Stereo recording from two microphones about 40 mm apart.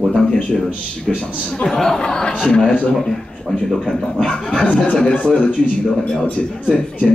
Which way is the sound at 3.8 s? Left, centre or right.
Left.